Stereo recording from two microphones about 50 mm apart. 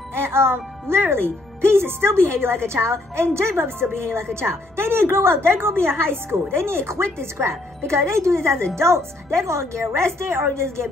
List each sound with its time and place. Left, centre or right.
0.1 s a woman's voice: right